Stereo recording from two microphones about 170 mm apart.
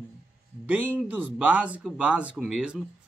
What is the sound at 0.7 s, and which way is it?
Speech, 10° right (ahead or behind).